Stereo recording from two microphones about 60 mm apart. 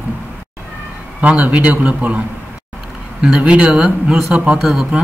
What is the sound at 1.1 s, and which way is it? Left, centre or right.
Speech, right.